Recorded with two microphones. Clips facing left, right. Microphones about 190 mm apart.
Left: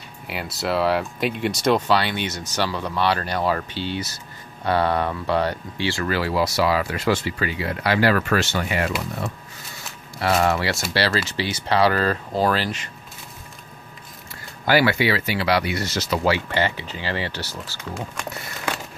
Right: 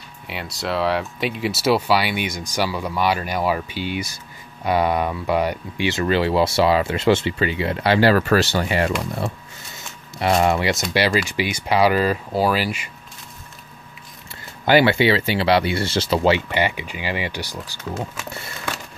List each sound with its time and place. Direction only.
0.3 s speech: centre (ahead or behind); by 8.9 s 30° right (ahead or behind)
10.1 s speech: 20° right (ahead or behind)
14.7 s speech: 25° right (ahead or behind)